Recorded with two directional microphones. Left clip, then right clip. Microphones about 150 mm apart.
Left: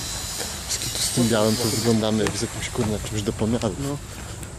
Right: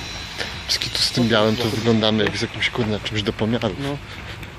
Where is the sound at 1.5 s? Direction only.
10° right (ahead or behind).